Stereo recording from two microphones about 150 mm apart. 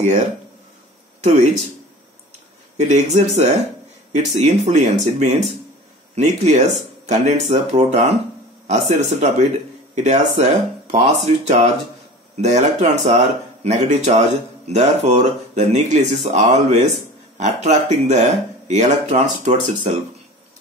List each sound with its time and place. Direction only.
1.2 s speech: 50° right (ahead or behind)
2.8 s speech: 50° right (ahead or behind)